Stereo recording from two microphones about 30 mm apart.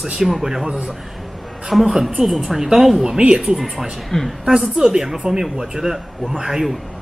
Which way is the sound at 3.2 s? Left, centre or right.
Right.